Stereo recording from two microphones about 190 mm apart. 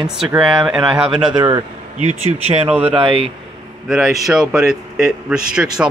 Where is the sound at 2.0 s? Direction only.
35° right (ahead or behind).